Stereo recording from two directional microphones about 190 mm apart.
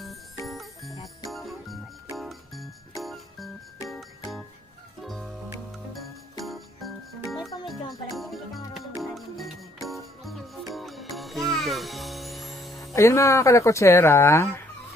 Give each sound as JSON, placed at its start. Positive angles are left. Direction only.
{"t": 0.5, "sound": "jingle bell", "side_deg": 0}
{"t": 2.1, "sound": "music", "side_deg": 0}
{"t": 5.0, "sound": "music", "side_deg": 0}
{"t": 6.4, "sound": "music", "side_deg": 0}
{"t": 12.9, "sound": "speech", "side_deg": 15}